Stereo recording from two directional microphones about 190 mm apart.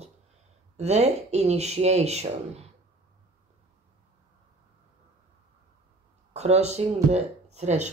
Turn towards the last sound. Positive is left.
turn(degrees=-35)  # may be behind; listen again after turning